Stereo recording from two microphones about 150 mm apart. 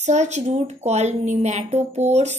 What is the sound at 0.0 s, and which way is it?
A woman's voice, 50° right (ahead or behind).